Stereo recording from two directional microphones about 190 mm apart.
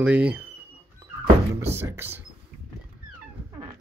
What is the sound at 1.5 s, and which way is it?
Speech, 10° right (ahead or behind).